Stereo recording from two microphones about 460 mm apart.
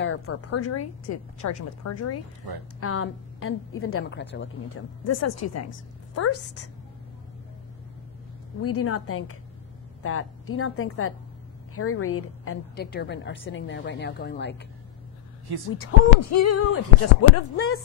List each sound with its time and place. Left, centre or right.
0.0 s a woman's voice: left
8.6 s a woman's voice: left
15.8 s a woman's voice: left